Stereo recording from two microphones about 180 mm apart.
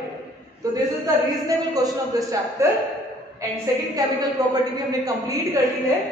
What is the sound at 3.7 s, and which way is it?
Speech, 20° right (ahead or behind).